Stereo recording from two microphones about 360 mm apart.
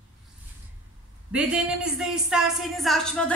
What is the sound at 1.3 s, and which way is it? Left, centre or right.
Speech, centre.